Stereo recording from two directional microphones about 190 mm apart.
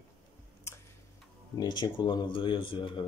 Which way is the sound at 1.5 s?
20° left (ahead or behind).